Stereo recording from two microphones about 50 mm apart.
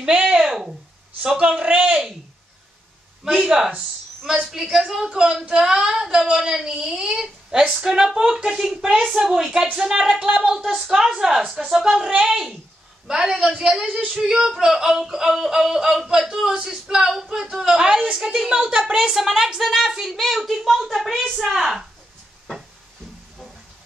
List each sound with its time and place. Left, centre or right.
0.4 s a sound: centre
1.2 s music: centre
1.5 s a man's voice: right
3.3 s music: centre
12.1 s a man's voice: centre
13.1 s music: centre
18.7 s a woman's voice: centre
21.5 s music: centre